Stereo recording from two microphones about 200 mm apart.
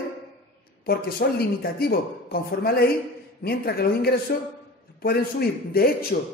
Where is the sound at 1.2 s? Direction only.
55° left (ahead or behind).